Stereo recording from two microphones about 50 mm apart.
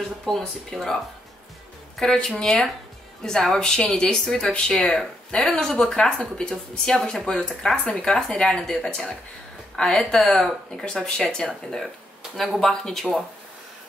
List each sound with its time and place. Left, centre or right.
0.2 s speech: centre
2.0 s speech: centre
11.8 s a sound: centre
12.5 s speech: centre